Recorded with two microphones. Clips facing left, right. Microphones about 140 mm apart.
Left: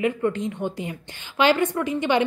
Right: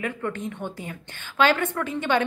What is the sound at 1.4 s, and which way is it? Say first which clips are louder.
Speech: left 2 dB; 15° left (ahead or behind).